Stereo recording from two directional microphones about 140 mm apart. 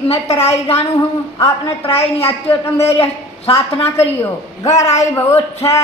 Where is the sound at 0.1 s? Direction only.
45° left (ahead or behind).